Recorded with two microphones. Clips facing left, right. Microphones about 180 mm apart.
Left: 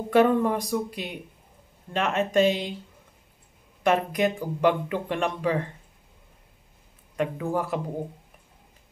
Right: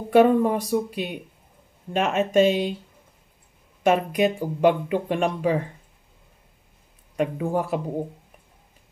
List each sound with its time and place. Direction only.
0.1 s speech: 15° right (ahead or behind)
3.8 s speech: 15° right (ahead or behind)
7.2 s speech: 15° right (ahead or behind)